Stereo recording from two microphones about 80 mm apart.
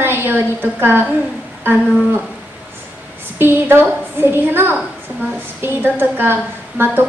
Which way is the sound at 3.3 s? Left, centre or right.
Right.